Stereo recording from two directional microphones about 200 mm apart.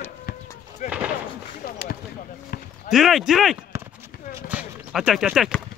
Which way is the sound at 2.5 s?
50° left (ahead or behind).